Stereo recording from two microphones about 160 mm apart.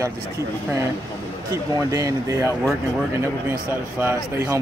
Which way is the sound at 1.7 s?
20° right (ahead or behind).